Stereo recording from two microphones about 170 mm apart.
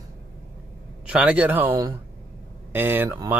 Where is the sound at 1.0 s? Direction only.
5° right (ahead or behind).